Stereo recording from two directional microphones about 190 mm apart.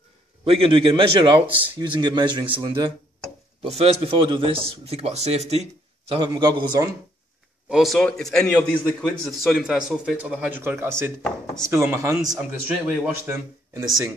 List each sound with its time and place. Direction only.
0.5 s speech: 30° right (ahead or behind)
7.7 s a man's voice: centre (ahead or behind)